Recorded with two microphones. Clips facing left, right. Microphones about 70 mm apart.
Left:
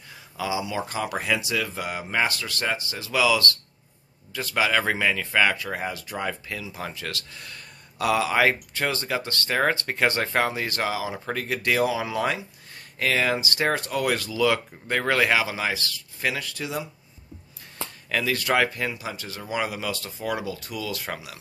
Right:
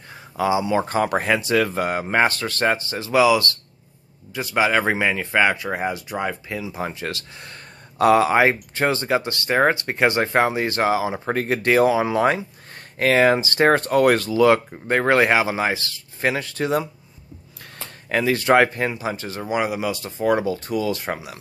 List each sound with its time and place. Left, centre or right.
0.1 s speech: right
18.0 s speech: right
20.2 s speech: right